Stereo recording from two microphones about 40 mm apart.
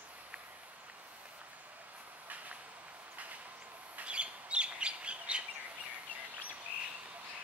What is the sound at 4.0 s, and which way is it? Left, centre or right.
Bird, right.